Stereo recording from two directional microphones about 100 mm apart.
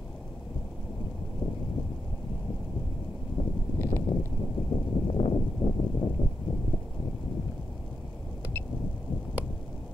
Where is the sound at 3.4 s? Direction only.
60° left (ahead or behind).